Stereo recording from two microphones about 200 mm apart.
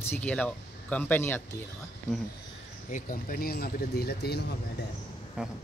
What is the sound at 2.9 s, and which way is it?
Speech, 45° left (ahead or behind).